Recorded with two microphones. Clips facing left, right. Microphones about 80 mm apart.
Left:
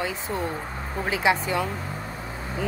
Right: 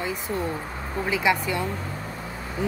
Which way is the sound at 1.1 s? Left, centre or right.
Left.